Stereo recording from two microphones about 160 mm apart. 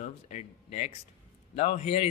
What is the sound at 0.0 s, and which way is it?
A man's voice, 45° left (ahead or behind).